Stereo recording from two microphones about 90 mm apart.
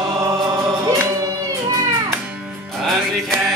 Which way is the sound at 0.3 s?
35° right (ahead or behind).